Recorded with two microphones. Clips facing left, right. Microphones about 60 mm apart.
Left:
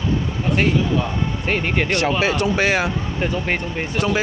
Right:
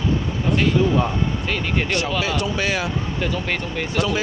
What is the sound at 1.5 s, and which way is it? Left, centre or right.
Speech, left.